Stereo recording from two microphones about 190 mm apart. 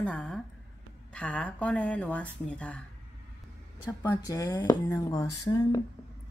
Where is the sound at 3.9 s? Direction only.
15° left (ahead or behind).